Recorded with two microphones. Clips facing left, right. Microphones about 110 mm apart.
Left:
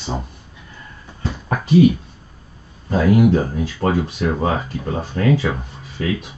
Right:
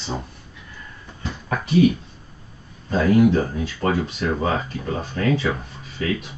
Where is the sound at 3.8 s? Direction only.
30° left (ahead or behind).